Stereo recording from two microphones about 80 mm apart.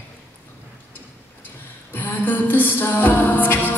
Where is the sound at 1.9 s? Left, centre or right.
Left.